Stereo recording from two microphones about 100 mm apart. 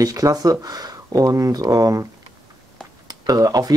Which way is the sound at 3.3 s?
40° right (ahead or behind).